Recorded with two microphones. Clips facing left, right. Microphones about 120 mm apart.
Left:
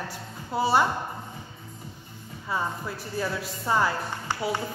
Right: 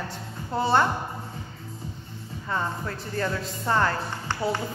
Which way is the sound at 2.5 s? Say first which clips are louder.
Right 1 dB; 10° left (ahead or behind).